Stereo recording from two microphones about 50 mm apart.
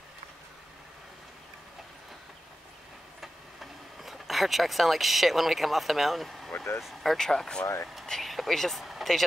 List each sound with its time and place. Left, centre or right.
4.0 s speech: centre
6.5 s vehicle: left
6.8 s speech: centre
7.6 s speech: left
8.1 s a sound: centre